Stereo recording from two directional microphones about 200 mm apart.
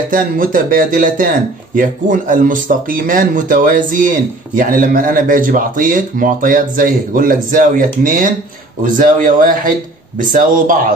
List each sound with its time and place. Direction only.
0.1 s speech: 45° right (ahead or behind)